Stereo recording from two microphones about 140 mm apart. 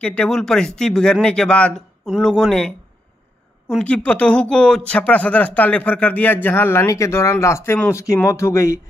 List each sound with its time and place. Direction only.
0.0 s speech: 10° left (ahead or behind)
3.6 s speech: 5° left (ahead or behind)